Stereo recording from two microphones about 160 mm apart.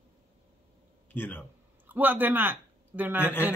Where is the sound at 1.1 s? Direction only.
10° left (ahead or behind).